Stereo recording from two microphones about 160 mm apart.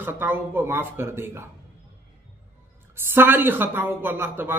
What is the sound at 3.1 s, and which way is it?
A man's voice, 15° right (ahead or behind).